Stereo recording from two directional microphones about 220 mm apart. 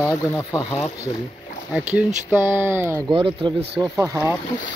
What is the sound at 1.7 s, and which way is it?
Speech, 5° right (ahead or behind).